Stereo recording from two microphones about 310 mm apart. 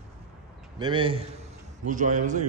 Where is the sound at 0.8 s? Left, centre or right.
Centre.